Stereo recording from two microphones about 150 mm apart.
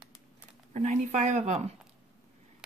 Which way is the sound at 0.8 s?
50° right (ahead or behind).